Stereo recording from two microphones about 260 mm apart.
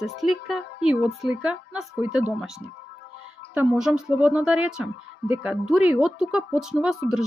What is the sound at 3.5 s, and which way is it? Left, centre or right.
Speech, centre.